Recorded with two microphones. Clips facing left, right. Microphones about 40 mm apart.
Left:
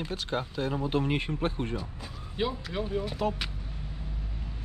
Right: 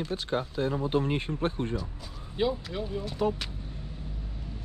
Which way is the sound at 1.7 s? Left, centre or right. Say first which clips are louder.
Right 1 dB; left.